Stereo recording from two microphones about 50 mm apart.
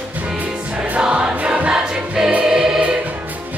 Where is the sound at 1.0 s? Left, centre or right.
Right.